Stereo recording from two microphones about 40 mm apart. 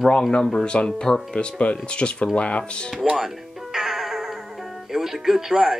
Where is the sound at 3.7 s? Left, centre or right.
Centre.